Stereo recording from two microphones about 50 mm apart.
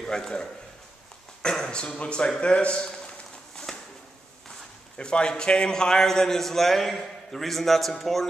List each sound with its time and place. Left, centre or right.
0.0 s a man's voice: centre
3.5 s a sound: centre
4.9 s a man's voice: centre